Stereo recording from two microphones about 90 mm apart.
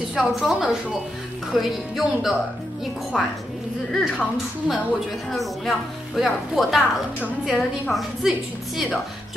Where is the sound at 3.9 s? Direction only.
5° left (ahead or behind).